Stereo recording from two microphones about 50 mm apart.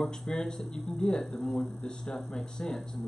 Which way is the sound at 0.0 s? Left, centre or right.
Centre.